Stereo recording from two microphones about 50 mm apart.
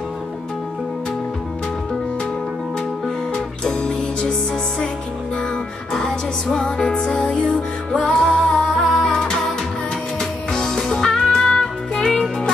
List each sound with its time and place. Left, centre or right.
3.6 s music: centre
5.9 s music: centre